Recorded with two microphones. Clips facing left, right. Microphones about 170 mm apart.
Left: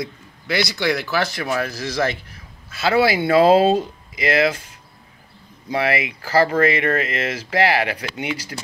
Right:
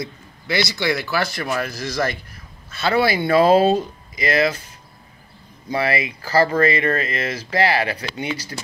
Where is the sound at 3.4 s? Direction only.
25° left (ahead or behind).